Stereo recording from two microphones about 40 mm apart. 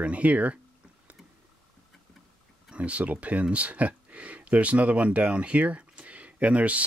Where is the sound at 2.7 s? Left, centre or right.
Right.